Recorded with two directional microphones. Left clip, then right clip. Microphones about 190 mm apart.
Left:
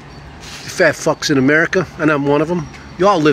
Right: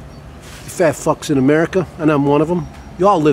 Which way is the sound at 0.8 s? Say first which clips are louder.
Left 2 dB; 25° right (ahead or behind).